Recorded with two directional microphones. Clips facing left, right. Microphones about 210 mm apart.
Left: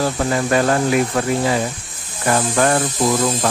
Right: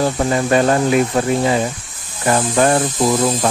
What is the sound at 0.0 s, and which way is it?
Speech, 25° right (ahead or behind).